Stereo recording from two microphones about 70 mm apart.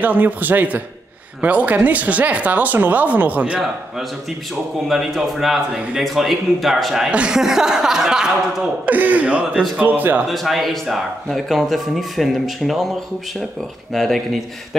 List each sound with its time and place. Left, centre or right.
0.0 s speech: right
4.8 s speech: centre
7.1 s speech: centre
8.8 s speech: right
10.2 s speech: centre
13.9 s speech: centre